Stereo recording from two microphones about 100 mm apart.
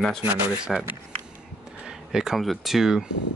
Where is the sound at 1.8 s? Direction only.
5° right (ahead or behind).